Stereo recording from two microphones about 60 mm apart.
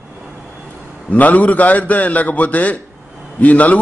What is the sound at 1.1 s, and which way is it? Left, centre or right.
A man's voice, left.